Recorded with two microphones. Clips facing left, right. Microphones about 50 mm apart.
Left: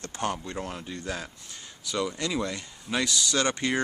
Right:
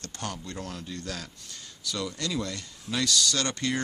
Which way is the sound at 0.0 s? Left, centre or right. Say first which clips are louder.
Left 6 dB; left.